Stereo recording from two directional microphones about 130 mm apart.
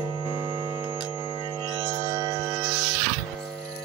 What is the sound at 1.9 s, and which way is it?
Music, 20° right (ahead or behind).